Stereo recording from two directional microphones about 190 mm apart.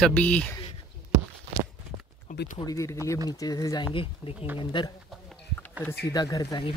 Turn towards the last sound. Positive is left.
turn(degrees=20)  # may be behind; listen again after turning